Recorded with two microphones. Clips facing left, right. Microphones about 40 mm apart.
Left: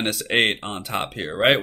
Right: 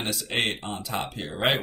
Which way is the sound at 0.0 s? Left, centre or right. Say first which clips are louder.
Left 7 dB; left.